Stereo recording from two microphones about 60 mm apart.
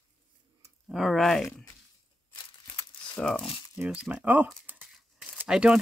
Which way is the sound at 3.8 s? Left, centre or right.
Centre.